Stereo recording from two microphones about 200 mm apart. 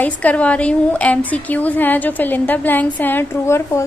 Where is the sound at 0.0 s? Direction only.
5° left (ahead or behind).